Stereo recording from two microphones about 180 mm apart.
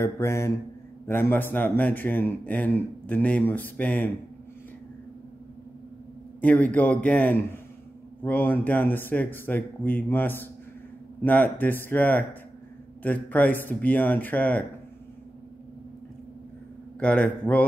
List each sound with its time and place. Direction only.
0.0 s a man's voice: 15° left (ahead or behind)
6.4 s a man's voice: 10° left (ahead or behind)
17.0 s a man's voice: 10° left (ahead or behind)